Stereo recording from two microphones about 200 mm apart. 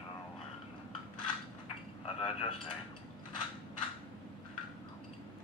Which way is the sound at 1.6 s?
30° left (ahead or behind).